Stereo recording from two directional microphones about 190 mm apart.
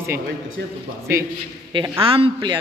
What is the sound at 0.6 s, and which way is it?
Speech, 65° right (ahead or behind).